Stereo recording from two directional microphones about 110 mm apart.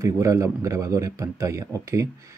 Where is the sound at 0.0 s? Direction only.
30° right (ahead or behind).